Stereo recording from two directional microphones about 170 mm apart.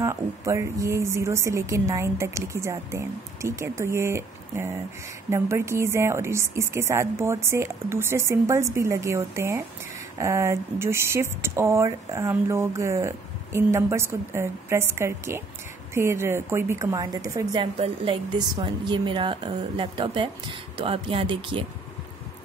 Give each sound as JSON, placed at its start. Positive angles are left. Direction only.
{"t": 0.0, "sound": "speech", "side_deg": -15}
{"t": 17.7, "sound": "a woman's voice", "side_deg": -35}
{"t": 18.6, "sound": "a woman's voice", "side_deg": -25}